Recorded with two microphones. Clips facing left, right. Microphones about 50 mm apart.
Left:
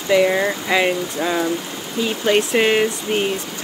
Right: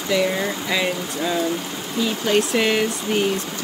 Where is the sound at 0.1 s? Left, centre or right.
Left.